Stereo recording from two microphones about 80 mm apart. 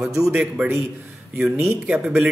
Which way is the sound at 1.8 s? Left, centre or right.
Centre.